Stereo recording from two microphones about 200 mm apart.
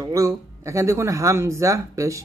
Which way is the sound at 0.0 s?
15° right (ahead or behind).